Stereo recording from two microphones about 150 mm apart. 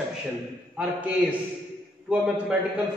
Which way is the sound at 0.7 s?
10° right (ahead or behind).